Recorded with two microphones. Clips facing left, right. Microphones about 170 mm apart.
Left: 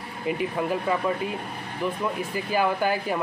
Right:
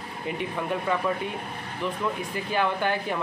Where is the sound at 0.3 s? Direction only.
5° left (ahead or behind).